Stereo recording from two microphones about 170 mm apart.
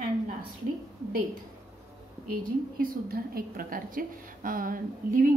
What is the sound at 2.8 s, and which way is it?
A woman's voice, 60° right (ahead or behind).